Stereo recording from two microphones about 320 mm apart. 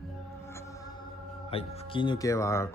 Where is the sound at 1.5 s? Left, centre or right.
Centre.